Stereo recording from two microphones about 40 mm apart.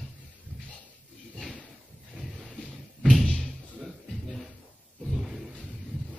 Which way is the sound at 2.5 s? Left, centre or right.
Centre.